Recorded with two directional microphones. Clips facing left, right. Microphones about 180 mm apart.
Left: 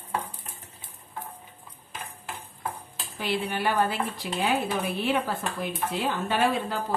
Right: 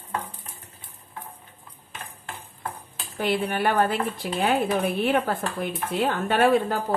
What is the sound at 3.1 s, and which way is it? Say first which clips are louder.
Dishes: right 4 dB; 50° right (ahead or behind).